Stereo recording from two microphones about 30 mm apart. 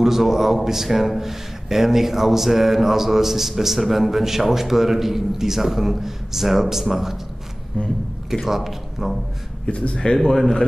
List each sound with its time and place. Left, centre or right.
0.0 s a man's voice: centre
7.7 s speech: left
8.5 s a man's voice: centre
9.7 s speech: left
10.3 s a man's voice: centre